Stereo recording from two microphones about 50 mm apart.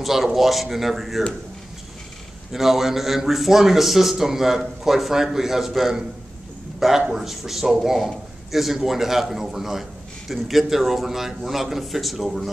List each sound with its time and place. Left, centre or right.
0.0 s a man's voice: centre
2.5 s a man's voice: centre